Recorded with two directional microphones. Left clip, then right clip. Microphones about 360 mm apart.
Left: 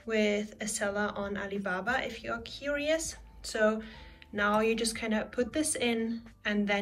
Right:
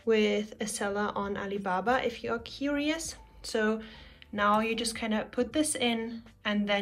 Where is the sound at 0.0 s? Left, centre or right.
Centre.